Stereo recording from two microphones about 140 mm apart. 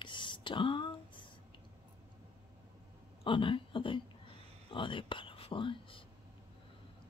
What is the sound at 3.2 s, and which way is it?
Speech, 40° left (ahead or behind).